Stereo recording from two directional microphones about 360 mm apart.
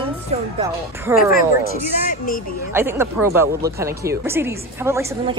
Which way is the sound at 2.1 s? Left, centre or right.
Left.